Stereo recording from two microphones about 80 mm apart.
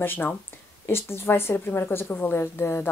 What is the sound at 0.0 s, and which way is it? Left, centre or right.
A woman's voice, left.